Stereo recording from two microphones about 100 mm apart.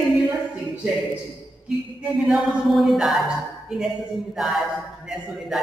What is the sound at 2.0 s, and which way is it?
Speech, 5° right (ahead or behind).